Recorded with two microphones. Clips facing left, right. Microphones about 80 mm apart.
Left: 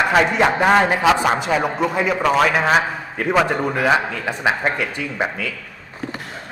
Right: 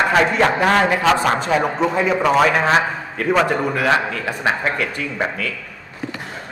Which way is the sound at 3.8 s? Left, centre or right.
Centre.